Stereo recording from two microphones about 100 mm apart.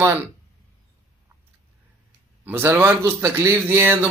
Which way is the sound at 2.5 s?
20° right (ahead or behind).